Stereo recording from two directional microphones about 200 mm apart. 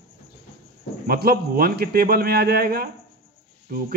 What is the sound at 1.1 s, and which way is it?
A man's voice, 50° right (ahead or behind).